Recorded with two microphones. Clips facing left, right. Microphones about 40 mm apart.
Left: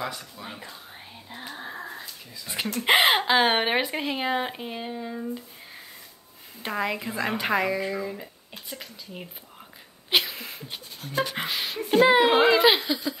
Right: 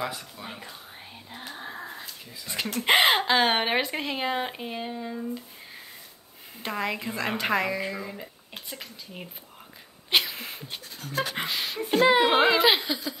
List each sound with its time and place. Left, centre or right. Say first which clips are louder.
0.0 s speech: even; centre
1.3 s speech: left 1 dB; centre
6.6 s speech: left 2 dB; centre
10.3 s a sound: even; right
11.2 s speech: even; centre